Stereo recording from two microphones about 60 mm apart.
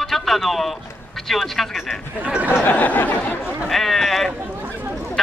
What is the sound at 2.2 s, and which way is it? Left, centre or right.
Speech, right.